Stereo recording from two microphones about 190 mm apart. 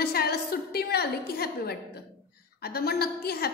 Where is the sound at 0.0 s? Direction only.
55° left (ahead or behind).